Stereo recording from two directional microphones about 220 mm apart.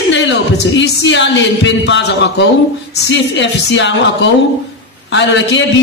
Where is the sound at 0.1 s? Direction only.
55° left (ahead or behind).